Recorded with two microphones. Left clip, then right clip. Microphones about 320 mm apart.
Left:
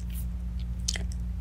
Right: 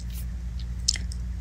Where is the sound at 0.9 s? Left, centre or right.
Centre.